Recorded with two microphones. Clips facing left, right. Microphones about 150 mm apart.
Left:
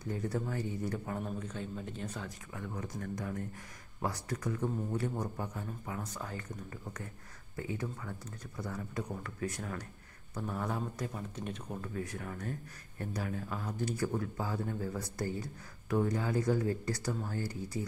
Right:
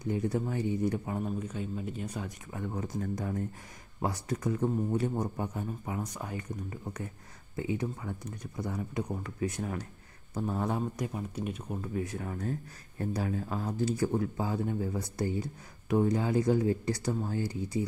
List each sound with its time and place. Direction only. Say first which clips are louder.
0.0 s speech: right 5 dB; 15° right (ahead or behind)
2.5 s a man's voice: right 6 dB; 25° right (ahead or behind)
11.1 s a man's voice: right 5 dB; 10° right (ahead or behind)